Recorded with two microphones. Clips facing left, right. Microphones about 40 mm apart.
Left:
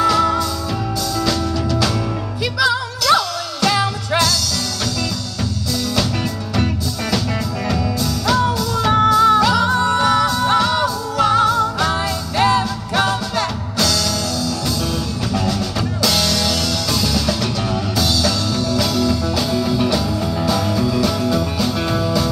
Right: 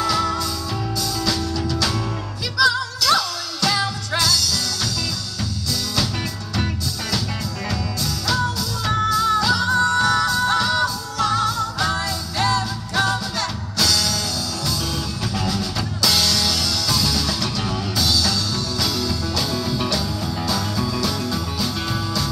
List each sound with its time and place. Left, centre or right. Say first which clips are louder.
0.1 s music: left 5 dB; left
1.3 s music: left 4 dB; centre
2.6 s music: even; left
6.5 s music: left 4 dB; centre
8.3 s music: left 6 dB; left
13.7 s music: left 2 dB; centre
15.3 s music: left 4 dB; centre